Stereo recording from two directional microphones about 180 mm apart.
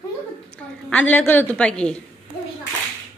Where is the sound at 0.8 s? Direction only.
10° left (ahead or behind).